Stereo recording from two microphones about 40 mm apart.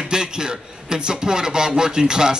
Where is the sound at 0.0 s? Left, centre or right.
Centre.